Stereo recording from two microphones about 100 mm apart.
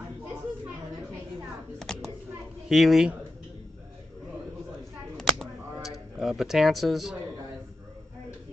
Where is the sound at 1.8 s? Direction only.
5° left (ahead or behind).